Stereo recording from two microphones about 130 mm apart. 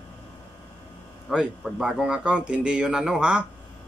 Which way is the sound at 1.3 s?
Centre (ahead or behind).